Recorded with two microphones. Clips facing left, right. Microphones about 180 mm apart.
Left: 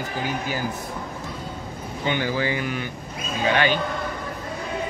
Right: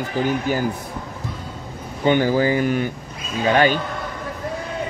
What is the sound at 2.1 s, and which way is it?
Speech, 45° right (ahead or behind).